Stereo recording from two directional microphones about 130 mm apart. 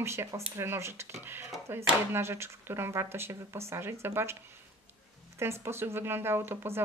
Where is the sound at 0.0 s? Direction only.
20° right (ahead or behind).